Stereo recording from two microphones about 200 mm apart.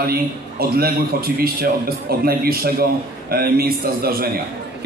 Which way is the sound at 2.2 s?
50° right (ahead or behind).